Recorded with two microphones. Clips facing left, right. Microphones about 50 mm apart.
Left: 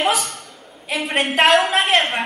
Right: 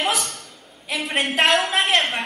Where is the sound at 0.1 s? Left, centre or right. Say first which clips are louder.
Left 3 dB; centre.